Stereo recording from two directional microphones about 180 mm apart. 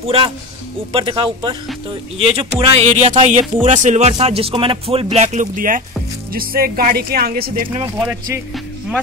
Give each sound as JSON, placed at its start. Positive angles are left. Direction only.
{"t": 0.9, "sound": "speech", "side_deg": -30}
{"t": 8.0, "sound": "speech", "side_deg": -15}